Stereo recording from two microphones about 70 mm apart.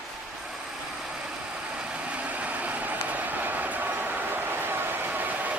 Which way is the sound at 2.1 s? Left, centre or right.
Right.